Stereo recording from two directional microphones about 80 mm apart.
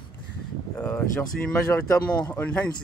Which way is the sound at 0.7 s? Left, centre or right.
Centre.